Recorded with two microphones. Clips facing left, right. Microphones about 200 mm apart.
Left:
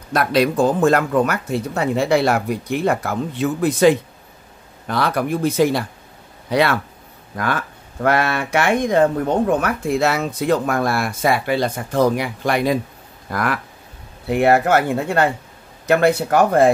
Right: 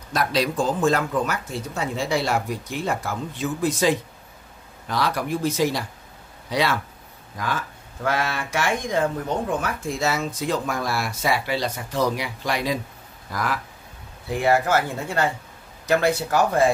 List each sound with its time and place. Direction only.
0.1 s speech: 60° left (ahead or behind)